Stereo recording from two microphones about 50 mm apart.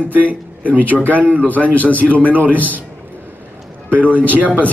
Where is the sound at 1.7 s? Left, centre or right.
Left.